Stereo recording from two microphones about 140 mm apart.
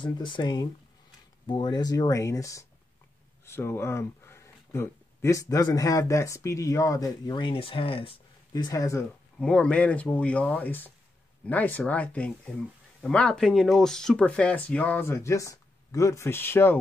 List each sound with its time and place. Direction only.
0.0 s speech: 35° left (ahead or behind)
8.6 s speech: 25° left (ahead or behind)
9.4 s speech: 5° left (ahead or behind)